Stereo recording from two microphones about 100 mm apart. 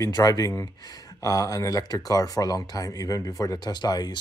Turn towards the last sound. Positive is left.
turn(degrees=45)  # may be behind; listen again after turning